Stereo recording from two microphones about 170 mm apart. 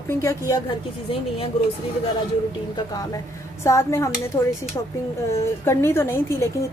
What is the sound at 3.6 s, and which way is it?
Speech, 15° left (ahead or behind).